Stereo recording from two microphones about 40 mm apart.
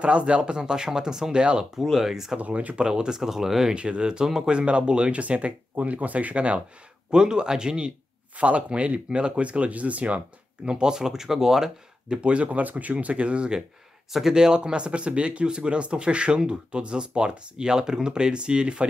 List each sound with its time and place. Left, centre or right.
0.0 s speech: right; by 1.3 s centre
1.3 s speech: right
1.9 s speech: centre
2.3 s speech: right
2.8 s speech: centre
3.7 s speech: right
7.1 s speech: right
8.4 s speech: right; by 11.7 s centre
12.1 s speech: right